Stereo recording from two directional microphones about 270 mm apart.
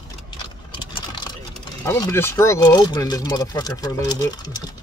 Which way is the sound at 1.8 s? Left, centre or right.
Centre.